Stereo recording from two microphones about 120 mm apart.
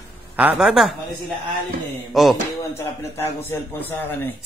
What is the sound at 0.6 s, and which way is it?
Speech, 5° right (ahead or behind).